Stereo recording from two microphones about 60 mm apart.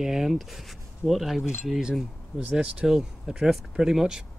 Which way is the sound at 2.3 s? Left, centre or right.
Right.